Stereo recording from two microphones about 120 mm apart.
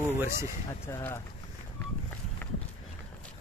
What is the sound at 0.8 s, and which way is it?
Speech, 20° left (ahead or behind).